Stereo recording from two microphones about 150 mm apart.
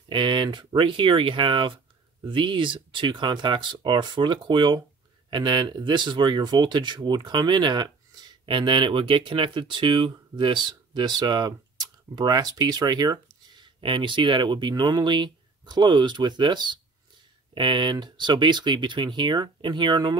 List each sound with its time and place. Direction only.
0.1 s speech: 35° right (ahead or behind)